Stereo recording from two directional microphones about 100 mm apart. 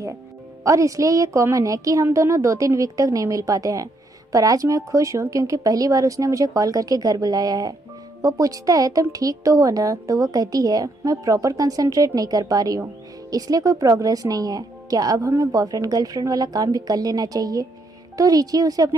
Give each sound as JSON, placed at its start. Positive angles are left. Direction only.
{"t": 0.7, "sound": "a woman's voice", "side_deg": -30}